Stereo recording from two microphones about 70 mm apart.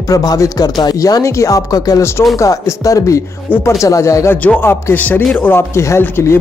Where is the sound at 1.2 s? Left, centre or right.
Left.